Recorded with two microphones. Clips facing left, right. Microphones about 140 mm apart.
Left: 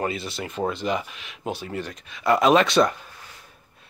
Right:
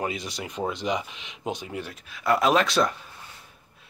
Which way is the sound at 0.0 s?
15° right (ahead or behind).